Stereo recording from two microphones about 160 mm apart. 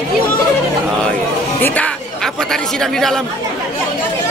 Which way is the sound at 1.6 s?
10° left (ahead or behind).